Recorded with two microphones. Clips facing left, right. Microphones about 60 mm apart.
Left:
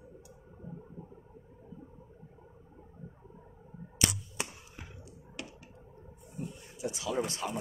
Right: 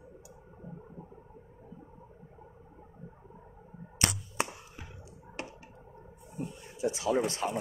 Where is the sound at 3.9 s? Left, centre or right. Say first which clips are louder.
Right 2 dB; right.